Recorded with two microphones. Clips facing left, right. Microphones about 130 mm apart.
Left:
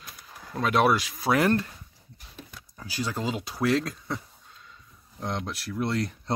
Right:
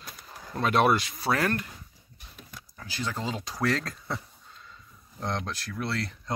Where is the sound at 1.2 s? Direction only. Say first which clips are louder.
Left 6 dB; 15° left (ahead or behind).